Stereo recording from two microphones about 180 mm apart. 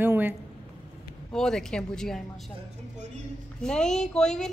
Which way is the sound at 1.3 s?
5° left (ahead or behind).